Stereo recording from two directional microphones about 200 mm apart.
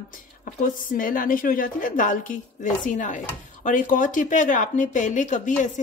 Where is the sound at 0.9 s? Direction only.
45° left (ahead or behind).